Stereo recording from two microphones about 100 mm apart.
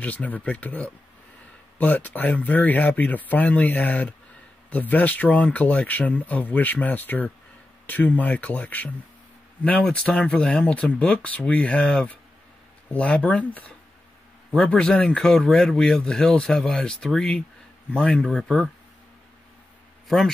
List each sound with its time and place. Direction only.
0.0 s speech: 15° left (ahead or behind)